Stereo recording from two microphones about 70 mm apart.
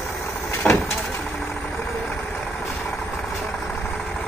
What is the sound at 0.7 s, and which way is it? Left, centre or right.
Vehicle, left.